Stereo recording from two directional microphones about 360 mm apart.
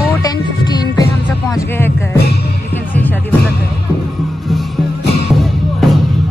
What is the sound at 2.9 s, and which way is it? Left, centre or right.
Music, centre.